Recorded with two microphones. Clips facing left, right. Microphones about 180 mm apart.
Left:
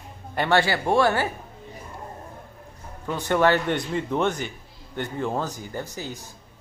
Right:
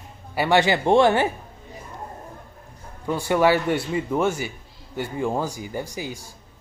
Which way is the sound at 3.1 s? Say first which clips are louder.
Right 2 dB; 10° right (ahead or behind).